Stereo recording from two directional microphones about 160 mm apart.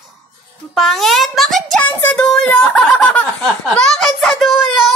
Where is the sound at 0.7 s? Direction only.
Centre (ahead or behind).